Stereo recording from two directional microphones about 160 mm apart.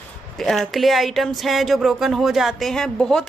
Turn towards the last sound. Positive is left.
turn(degrees=5)  # may be behind; listen again after turning